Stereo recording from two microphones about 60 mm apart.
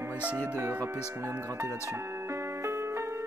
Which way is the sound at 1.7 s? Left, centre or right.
Right.